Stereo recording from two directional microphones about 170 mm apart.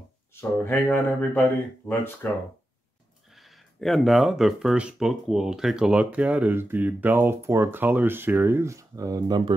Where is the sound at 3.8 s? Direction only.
Centre (ahead or behind).